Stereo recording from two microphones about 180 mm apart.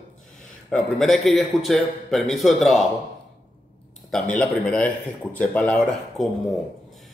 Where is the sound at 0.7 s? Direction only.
5° left (ahead or behind).